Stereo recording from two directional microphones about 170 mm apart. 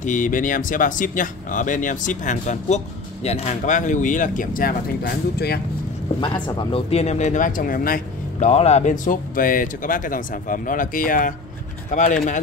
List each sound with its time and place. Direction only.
0.0 s speech: 50° left (ahead or behind); by 5.6 s 65° left (ahead or behind)
6.2 s speech: 25° left (ahead or behind); by 8.5 s 55° left (ahead or behind)
8.5 s speech: 40° left (ahead or behind)